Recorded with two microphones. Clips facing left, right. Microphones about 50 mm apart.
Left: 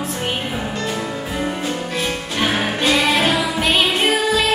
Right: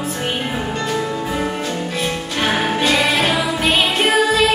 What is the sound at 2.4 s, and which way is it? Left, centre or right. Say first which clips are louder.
Music: right 2 dB; centre.